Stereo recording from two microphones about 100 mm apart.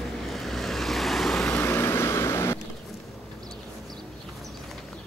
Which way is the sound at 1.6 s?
25° left (ahead or behind).